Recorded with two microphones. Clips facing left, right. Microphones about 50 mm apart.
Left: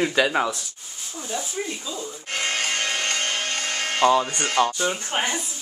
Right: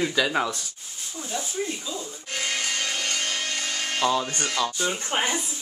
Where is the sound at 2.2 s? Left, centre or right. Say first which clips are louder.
Left 4 dB; left.